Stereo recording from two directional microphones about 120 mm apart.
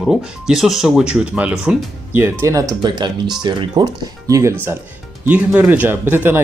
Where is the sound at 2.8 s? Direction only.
35° right (ahead or behind).